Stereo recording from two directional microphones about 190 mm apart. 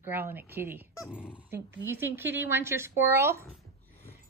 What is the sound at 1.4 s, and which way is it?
Speech, 10° right (ahead or behind).